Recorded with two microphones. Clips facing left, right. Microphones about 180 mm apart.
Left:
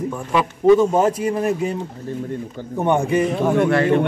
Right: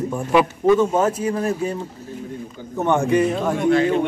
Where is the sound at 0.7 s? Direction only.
15° left (ahead or behind).